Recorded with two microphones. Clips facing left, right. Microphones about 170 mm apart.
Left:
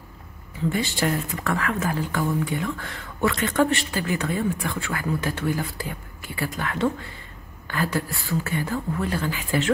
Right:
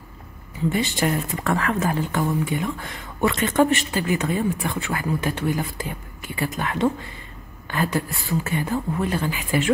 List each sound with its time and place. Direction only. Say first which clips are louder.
0.7 s speech: right 2 dB; 20° right (ahead or behind)